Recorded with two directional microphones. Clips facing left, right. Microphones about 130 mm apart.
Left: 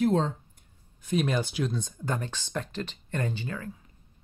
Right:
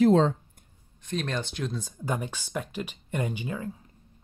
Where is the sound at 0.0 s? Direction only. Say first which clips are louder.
Right 5 dB; 90° right.